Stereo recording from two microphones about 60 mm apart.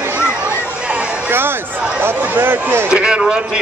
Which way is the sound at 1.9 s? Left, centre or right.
Right.